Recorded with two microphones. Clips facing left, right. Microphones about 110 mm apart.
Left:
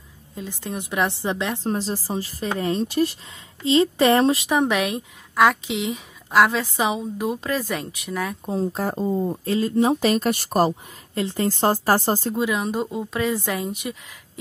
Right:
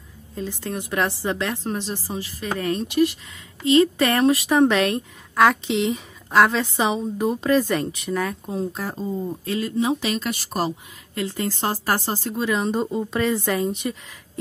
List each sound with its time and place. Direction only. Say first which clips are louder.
0.4 s a woman's voice: right 2 dB; 15° left (ahead or behind)
1.6 s speech: left 3 dB; 30° left (ahead or behind)
4.5 s speech: right 3 dB; 10° left (ahead or behind)
8.5 s speech: left 3 dB; 35° left (ahead or behind)
9.3 s speech: left 3 dB; 35° left (ahead or behind); by 10.7 s 50° left (ahead or behind)
11.1 s speech: left 3 dB; 30° left (ahead or behind)
12.4 s a woman's voice: right 1 dB; 10° left (ahead or behind)